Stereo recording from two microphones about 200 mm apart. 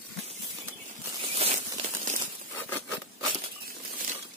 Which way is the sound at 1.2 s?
35° right (ahead or behind).